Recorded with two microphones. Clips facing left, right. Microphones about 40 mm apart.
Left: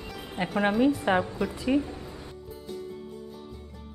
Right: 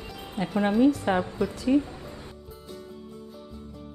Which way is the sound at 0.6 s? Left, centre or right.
Centre.